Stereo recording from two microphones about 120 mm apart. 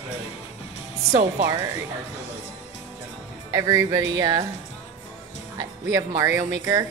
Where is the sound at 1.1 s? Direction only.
90° right.